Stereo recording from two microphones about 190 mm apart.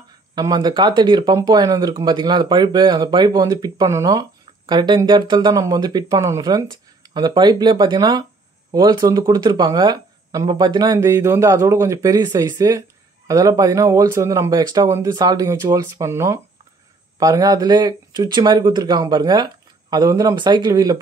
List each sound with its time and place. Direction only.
0.3 s speech: 20° right (ahead or behind)